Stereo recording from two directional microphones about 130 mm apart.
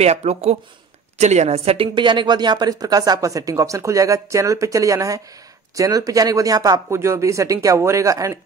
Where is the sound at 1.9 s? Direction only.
35° right (ahead or behind).